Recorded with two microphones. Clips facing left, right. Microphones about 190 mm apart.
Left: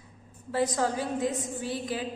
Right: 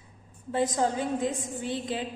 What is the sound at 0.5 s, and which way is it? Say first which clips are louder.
A woman's voice: right 1 dB; 20° right (ahead or behind).